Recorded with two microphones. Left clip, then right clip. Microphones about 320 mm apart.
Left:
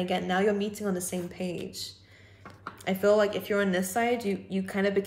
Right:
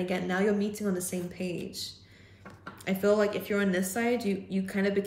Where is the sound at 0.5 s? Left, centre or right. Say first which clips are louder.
Left 1 dB; centre.